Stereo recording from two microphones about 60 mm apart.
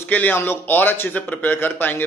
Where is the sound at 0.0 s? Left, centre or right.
Left.